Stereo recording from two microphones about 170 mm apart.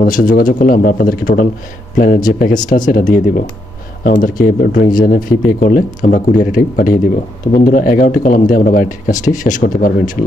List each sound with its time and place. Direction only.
0.0 s speech: 55° left (ahead or behind)